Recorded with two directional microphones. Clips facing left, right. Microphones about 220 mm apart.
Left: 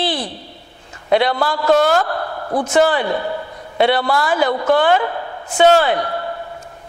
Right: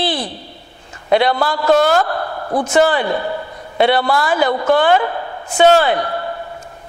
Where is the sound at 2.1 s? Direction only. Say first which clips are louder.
Right 1 dB; 15° right (ahead or behind).